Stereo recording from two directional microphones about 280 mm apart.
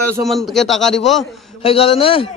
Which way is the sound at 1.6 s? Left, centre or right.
Left.